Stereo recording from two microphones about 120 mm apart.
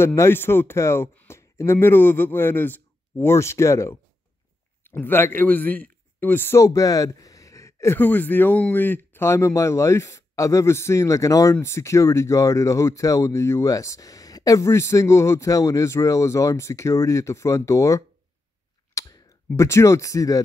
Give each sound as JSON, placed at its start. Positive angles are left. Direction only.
{"t": 0.0, "sound": "speech", "side_deg": 20}